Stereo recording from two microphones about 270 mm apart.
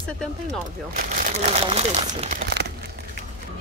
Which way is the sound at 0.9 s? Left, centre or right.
Right.